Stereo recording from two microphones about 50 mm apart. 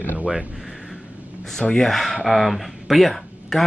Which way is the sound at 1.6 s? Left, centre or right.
Centre.